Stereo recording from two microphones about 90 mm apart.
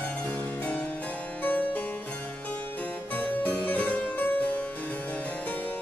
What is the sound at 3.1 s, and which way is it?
Harpsichord, 15° left (ahead or behind).